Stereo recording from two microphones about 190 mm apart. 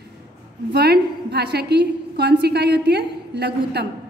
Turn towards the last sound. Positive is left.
turn(degrees=-60)  # may be behind; listen again after turning